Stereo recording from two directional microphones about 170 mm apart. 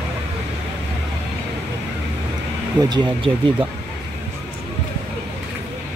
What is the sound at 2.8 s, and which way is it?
Speech, 25° right (ahead or behind).